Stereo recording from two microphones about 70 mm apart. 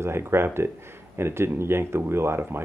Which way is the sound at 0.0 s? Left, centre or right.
Right.